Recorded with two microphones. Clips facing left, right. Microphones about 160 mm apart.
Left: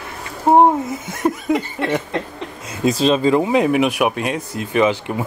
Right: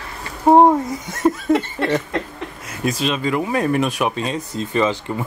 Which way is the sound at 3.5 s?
15° left (ahead or behind).